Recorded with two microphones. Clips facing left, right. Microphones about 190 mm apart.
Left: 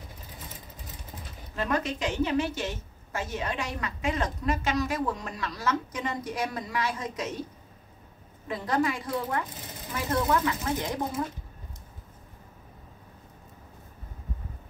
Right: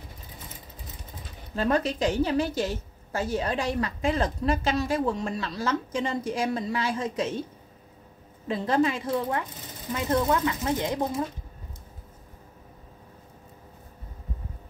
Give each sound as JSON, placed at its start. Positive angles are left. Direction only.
{"t": 1.5, "sound": "a woman's voice", "side_deg": -30}
{"t": 8.5, "sound": "speech", "side_deg": -25}